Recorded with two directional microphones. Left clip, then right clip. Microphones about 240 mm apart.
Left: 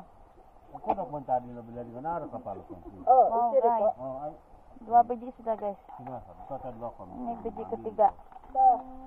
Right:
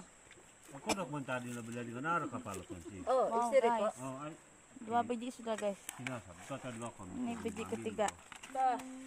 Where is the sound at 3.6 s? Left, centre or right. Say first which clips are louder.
Left 5 dB; centre.